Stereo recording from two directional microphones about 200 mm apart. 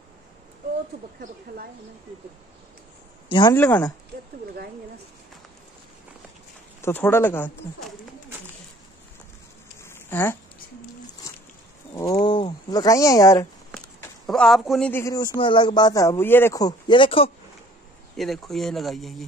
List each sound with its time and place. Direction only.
3.3 s speech: 25° left (ahead or behind)
3.5 s a man's voice: 10° left (ahead or behind)
6.8 s a man's voice: 10° left (ahead or behind)
9.8 s a sound: 10° left (ahead or behind)
11.9 s speech: 20° left (ahead or behind)
14.2 s a man's voice: centre (ahead or behind); by 17.3 s 25° left (ahead or behind)
18.1 s speech: centre (ahead or behind)